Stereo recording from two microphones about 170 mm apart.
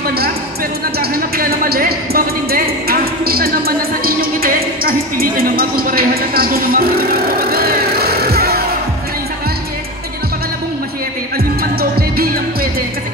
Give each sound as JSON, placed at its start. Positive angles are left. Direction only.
{"t": 0.9, "sound": "music", "side_deg": -60}
{"t": 11.6, "sound": "music", "side_deg": -60}